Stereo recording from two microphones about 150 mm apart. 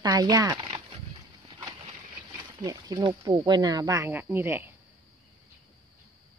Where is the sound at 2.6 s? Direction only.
25° right (ahead or behind).